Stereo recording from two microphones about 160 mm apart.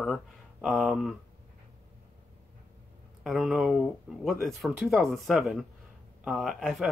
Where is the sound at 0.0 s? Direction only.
Centre (ahead or behind).